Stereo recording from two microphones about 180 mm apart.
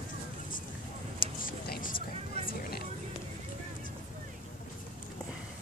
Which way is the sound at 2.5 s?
60° left (ahead or behind).